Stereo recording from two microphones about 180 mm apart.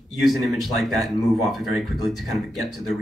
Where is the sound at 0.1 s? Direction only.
Centre (ahead or behind).